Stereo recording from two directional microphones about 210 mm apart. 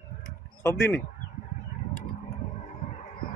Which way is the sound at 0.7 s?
15° left (ahead or behind).